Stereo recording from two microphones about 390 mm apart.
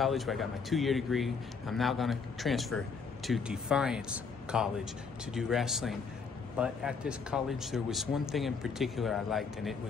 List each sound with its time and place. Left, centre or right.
0.0 s speech: centre